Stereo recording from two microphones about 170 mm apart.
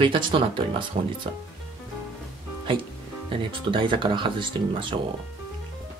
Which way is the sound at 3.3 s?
30° right (ahead or behind).